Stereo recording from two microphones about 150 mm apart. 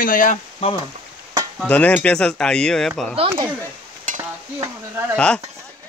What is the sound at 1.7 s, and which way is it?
Speech, 10° left (ahead or behind).